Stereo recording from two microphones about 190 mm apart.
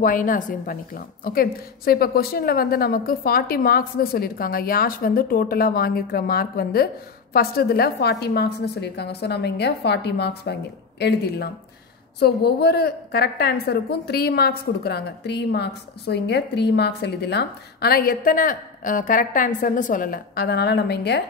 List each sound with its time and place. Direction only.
0.0 s a woman's voice: 45° left (ahead or behind); by 21.2 s 60° left (ahead or behind)